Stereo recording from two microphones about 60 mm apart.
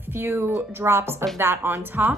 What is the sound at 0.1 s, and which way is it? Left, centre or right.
Speech, right.